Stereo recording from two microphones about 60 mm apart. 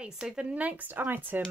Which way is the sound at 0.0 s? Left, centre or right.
Centre.